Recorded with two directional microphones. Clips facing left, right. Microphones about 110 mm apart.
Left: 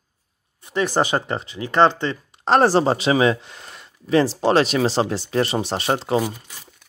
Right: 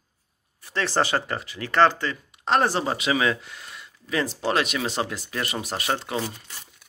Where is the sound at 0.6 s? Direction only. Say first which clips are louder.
Left 4 dB; 15° left (ahead or behind); by 6.2 s 30° left (ahead or behind).